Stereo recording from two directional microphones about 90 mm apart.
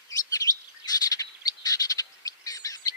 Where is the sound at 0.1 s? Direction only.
40° left (ahead or behind).